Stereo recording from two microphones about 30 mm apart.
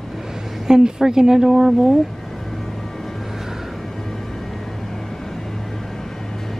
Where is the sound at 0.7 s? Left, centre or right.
Right.